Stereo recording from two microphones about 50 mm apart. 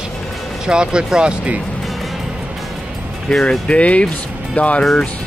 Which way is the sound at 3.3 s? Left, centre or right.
Centre.